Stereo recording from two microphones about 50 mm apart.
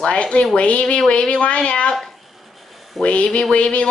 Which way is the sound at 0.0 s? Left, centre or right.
Left.